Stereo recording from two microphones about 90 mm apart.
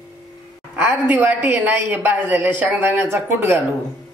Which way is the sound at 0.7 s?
20° right (ahead or behind).